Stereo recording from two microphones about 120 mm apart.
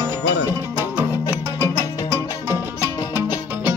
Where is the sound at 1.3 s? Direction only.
25° left (ahead or behind).